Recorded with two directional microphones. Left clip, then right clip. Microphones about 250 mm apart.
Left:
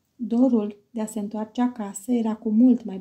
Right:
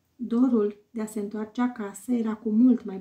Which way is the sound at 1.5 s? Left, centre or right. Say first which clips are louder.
Left 3 dB; right.